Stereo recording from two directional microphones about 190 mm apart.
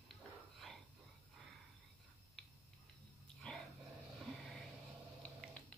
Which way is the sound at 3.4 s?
5° left (ahead or behind).